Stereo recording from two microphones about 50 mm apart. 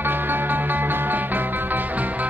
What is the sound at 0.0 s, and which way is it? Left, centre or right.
Music, right.